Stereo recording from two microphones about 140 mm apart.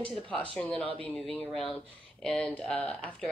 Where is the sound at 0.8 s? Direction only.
40° right (ahead or behind).